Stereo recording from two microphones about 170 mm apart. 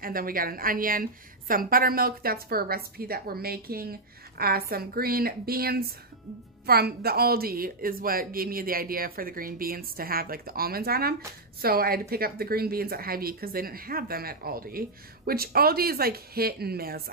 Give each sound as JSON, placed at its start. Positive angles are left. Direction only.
{"t": 0.0, "sound": "a woman's voice", "side_deg": -55}